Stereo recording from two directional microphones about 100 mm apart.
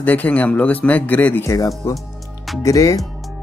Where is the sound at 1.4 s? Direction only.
30° left (ahead or behind).